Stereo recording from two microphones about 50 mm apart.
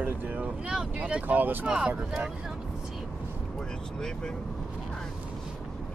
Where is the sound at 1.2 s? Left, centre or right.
Right.